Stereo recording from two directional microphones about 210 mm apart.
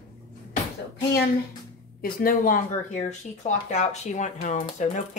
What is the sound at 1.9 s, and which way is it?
Speech, 45° left (ahead or behind).